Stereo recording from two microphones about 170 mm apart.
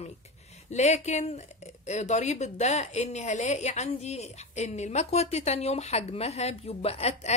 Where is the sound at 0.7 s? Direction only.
40° left (ahead or behind).